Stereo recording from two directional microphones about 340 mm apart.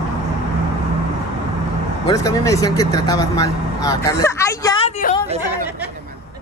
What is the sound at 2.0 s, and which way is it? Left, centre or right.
Speech, centre.